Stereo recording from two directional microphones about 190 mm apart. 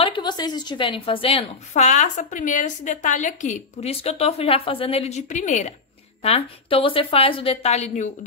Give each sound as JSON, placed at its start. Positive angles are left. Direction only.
{"t": 0.0, "sound": "a woman's voice", "side_deg": 25}